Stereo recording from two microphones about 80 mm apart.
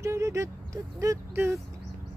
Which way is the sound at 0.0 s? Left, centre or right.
Right.